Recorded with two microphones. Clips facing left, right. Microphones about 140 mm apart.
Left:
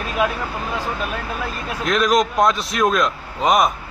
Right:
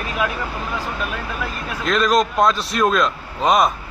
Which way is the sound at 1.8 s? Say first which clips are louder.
Even; 5° left (ahead or behind).